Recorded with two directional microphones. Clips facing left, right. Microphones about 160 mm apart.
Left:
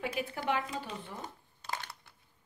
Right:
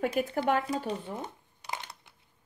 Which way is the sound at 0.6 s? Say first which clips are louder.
Right 8 dB; 35° right (ahead or behind).